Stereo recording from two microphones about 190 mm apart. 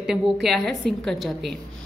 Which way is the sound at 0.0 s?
Centre (ahead or behind).